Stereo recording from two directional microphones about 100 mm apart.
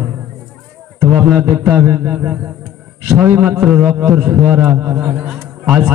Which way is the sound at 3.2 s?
20° right (ahead or behind).